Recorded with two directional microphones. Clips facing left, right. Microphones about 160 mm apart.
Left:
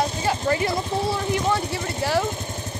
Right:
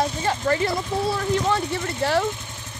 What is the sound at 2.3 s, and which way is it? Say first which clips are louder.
Vehicle: left 6 dB; 40° left (ahead or behind).